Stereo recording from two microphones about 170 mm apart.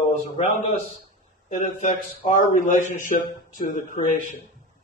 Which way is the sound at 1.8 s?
50° left (ahead or behind).